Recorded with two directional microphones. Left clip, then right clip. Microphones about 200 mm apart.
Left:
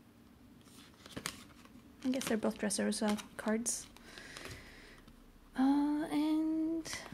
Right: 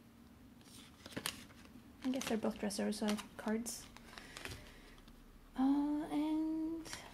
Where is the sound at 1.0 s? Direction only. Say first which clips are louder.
Even; 15° left (ahead or behind).